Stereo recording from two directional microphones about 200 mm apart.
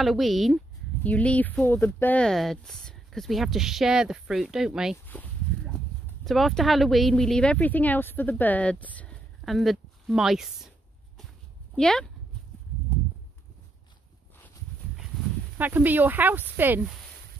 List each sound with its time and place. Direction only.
0.0 s speech: centre (ahead or behind)
5.0 s a sound: 10° left (ahead or behind)
6.2 s speech: centre (ahead or behind)
11.7 s speech: 5° left (ahead or behind)
15.5 s speech: 10° right (ahead or behind)